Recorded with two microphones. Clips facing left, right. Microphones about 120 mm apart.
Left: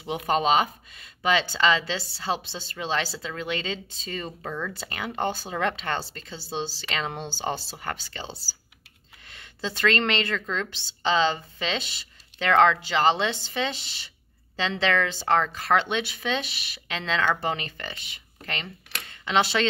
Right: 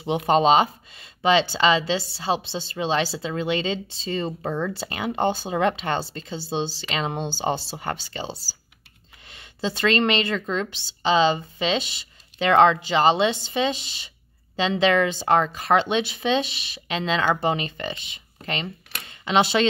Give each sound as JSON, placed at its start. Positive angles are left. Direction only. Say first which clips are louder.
{"t": 0.0, "sound": "a woman's voice", "louder": "right 5 dB", "side_deg": -25}